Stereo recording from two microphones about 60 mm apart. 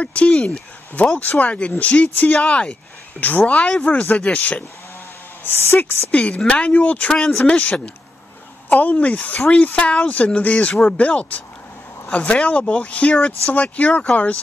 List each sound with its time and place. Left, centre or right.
0.0 s speech: left
6.1 s speech: left